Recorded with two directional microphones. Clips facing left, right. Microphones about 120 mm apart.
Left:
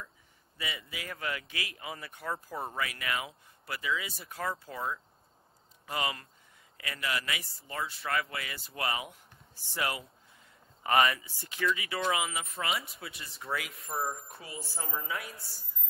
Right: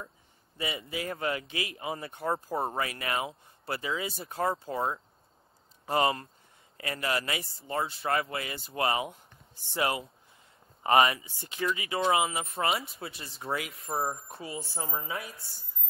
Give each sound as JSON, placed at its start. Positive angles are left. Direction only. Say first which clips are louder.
{"t": 0.6, "sound": "speech", "louder": "right 6 dB", "side_deg": -30}